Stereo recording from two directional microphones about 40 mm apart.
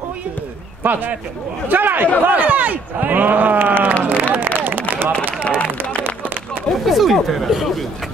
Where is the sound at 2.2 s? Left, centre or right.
Right.